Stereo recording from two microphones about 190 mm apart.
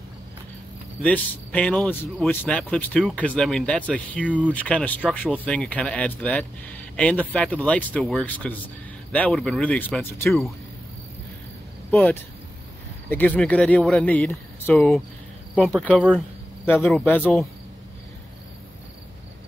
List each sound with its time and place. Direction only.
1.0 s speech: 10° left (ahead or behind)
4.3 s speech: 10° right (ahead or behind)
4.6 s speech: 5° left (ahead or behind)
11.9 s speech: 10° left (ahead or behind)